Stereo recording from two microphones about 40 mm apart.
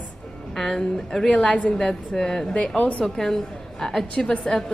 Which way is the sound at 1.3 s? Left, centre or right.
Left.